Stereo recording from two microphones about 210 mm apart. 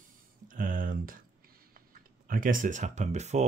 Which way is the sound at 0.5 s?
40° right (ahead or behind).